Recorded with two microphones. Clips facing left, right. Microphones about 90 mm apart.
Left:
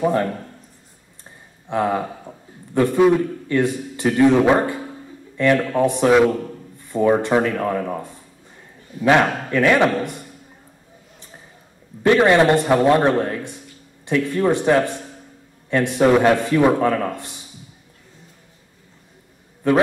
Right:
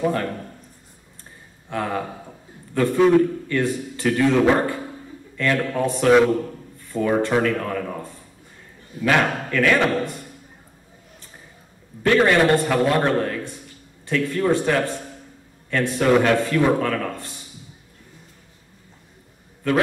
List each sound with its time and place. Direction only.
0.0 s a man's voice: 20° left (ahead or behind)
1.7 s a man's voice: 20° left (ahead or behind)
12.0 s a man's voice: 20° left (ahead or behind)
19.6 s a man's voice: 20° left (ahead or behind)